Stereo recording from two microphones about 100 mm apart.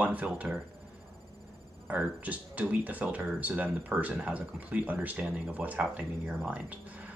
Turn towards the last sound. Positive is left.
turn(degrees=-10)  # may be behind; listen again after turning